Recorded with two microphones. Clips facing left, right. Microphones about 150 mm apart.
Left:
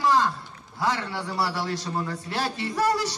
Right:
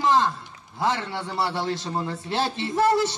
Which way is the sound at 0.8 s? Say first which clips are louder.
Right 1 dB; 20° right (ahead or behind).